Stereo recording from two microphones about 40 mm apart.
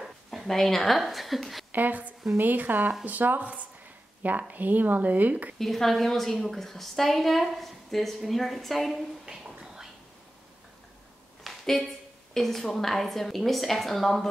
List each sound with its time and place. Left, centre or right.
0.0 s a sound: centre
0.5 s a woman's voice: centre
1.7 s speech: right
5.6 s a woman's voice: centre
9.2 s a sound: centre
11.6 s a woman's voice: centre